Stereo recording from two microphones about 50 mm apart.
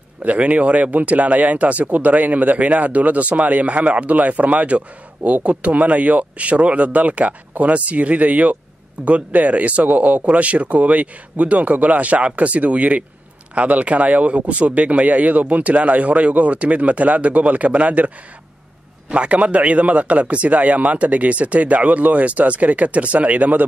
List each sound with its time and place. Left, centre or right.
0.2 s speech: right